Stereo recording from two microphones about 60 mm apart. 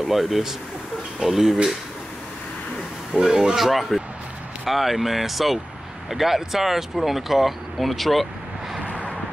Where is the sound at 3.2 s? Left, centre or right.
Centre.